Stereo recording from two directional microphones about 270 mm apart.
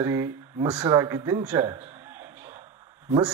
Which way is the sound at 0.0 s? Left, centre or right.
Centre.